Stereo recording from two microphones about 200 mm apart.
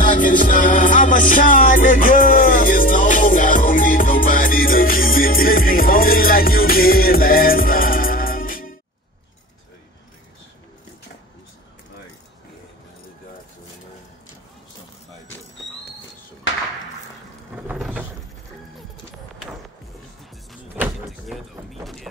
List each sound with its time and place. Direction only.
0.0 s music: 40° left (ahead or behind)
17.6 s a sound: 5° right (ahead or behind)
20.7 s vehicle: 5° right (ahead or behind)